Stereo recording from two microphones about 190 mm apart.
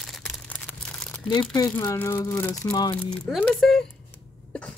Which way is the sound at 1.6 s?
15° left (ahead or behind).